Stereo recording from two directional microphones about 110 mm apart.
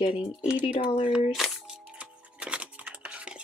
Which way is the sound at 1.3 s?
Centre (ahead or behind).